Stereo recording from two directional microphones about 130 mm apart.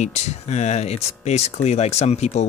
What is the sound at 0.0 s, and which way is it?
Speech, 60° left (ahead or behind).